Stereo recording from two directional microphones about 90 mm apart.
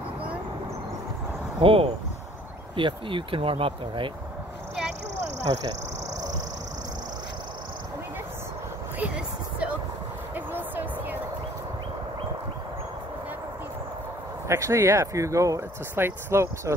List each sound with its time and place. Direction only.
1.6 s speech: 90° right
2.7 s speech: 70° right (ahead or behind)
9.0 s a sound: 15° right (ahead or behind)
14.5 s speech: 30° right (ahead or behind)